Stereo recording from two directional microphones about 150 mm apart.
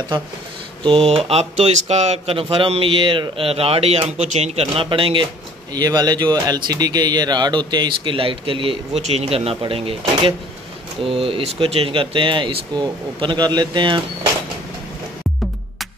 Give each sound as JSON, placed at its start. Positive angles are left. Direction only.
{"t": 0.8, "sound": "speech", "side_deg": -40}